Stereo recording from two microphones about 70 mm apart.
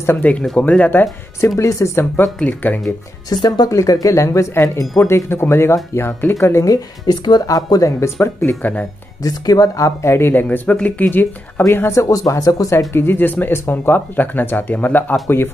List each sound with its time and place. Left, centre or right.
0.2 s speech: left
1.6 s speech: left
2.4 s speech: left
3.4 s speech: left
6.3 s speech: left
6.7 s speech: left
7.4 s speech: left
8.0 s speech: left
9.2 s speech: left
10.1 s speech: left
10.4 s speech: left
12.0 s speech: left
12.9 s speech: left
15.2 s speech: left